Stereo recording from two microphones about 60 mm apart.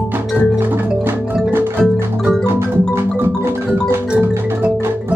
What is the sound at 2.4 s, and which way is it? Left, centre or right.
Music, right.